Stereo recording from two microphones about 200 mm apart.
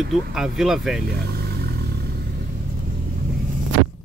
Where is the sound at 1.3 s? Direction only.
50° right (ahead or behind).